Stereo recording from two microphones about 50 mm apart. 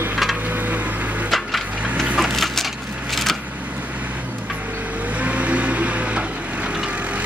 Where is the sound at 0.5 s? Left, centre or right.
Right.